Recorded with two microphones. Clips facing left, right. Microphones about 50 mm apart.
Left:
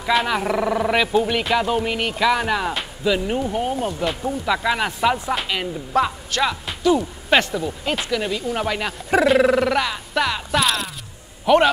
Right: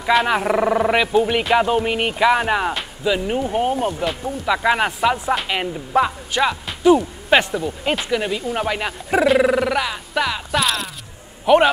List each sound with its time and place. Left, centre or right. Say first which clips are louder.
0.0 s speech: right 3 dB; centre; by 2.7 s right
2.7 s speech: even; centre
3.5 s speech: right 3 dB; right
4.0 s speech: even; centre
4.6 s speech: right 6 dB; centre
5.0 s speech: right 1 dB; centre
11.4 s speech: right 2 dB; centre